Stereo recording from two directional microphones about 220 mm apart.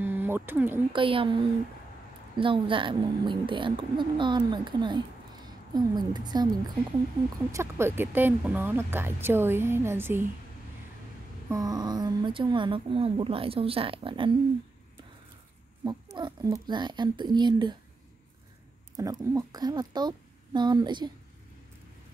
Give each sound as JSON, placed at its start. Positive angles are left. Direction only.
{"t": 0.0, "sound": "a sound", "side_deg": -10}
{"t": 0.9, "sound": "a woman's voice", "side_deg": -25}
{"t": 7.5, "sound": "speech", "side_deg": -10}
{"t": 11.4, "sound": "a woman's voice", "side_deg": -15}
{"t": 15.8, "sound": "a woman's voice", "side_deg": -15}
{"t": 19.0, "sound": "a woman's voice", "side_deg": -15}